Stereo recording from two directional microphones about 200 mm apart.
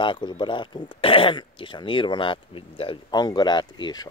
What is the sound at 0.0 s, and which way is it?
Speech, 25° left (ahead or behind).